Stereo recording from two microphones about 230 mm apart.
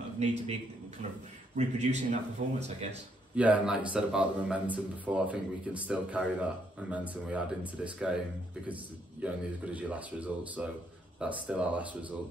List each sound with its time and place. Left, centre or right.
0.2 s a man's voice: right
1.6 s a man's voice: right
3.3 s speech: centre
9.2 s speech: centre